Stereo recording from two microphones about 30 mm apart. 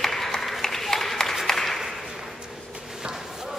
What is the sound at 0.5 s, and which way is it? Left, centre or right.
Applause, centre.